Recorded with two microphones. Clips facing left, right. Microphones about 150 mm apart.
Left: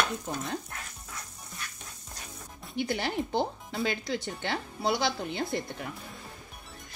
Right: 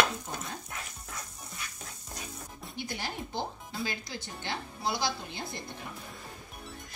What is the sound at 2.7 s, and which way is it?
Speech, 65° left (ahead or behind).